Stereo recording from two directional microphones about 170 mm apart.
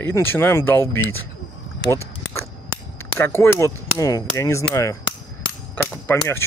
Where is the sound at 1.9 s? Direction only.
15° left (ahead or behind).